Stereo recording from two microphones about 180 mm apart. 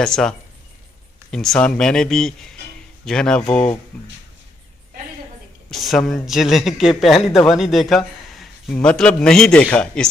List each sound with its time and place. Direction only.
0.0 s a man's voice: 5° left (ahead or behind)
5.7 s a man's voice: centre (ahead or behind)